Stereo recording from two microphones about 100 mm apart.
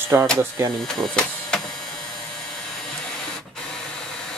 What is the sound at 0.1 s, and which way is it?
Speech, 25° right (ahead or behind).